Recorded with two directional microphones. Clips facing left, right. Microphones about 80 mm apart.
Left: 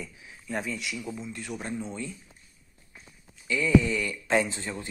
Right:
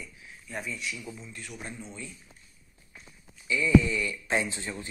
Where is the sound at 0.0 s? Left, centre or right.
Left.